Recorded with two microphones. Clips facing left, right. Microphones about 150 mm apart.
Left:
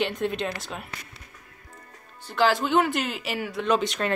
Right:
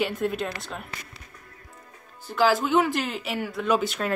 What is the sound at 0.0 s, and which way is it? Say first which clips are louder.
Speech: even; 5° right (ahead or behind).